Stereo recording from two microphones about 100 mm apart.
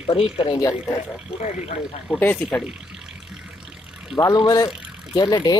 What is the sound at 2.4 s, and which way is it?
Speech, 15° left (ahead or behind).